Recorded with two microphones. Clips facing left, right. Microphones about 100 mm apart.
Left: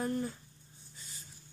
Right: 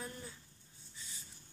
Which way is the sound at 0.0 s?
50° left (ahead or behind).